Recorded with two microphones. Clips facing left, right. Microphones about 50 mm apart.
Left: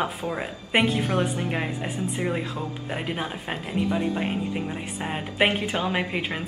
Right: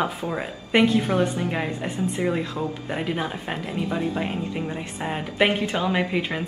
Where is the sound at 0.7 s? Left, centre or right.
Centre.